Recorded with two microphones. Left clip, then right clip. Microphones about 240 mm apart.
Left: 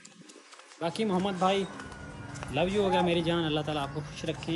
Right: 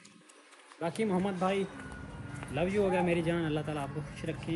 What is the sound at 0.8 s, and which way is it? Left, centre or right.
Speech, centre.